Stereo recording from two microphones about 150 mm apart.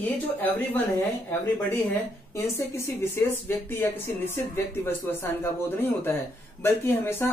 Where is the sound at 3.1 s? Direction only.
15° left (ahead or behind).